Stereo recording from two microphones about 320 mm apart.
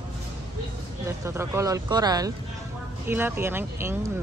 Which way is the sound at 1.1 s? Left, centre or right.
Centre.